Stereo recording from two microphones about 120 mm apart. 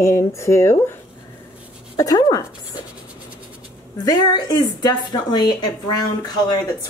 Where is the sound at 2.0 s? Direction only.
30° left (ahead or behind).